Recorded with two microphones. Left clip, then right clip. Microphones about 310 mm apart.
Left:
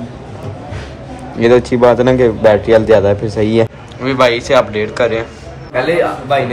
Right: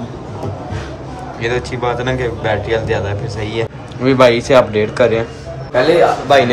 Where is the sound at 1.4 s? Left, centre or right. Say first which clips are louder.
Left 10 dB; centre.